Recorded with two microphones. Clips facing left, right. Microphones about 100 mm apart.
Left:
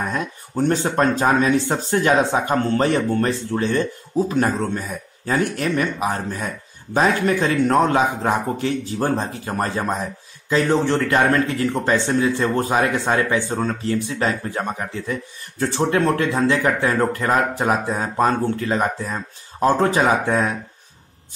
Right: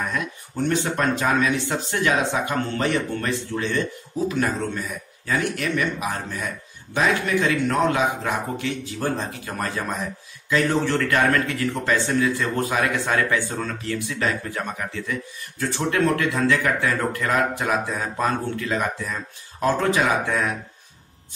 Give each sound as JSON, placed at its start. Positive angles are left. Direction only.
{"t": 0.1, "sound": "speech", "side_deg": 35}